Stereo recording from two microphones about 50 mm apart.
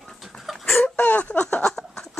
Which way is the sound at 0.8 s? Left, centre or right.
Left.